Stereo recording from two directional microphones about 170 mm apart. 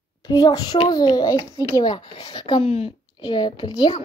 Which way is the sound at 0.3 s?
20° left (ahead or behind).